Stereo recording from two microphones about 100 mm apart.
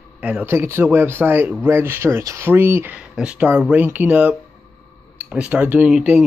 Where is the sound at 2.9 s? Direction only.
10° right (ahead or behind).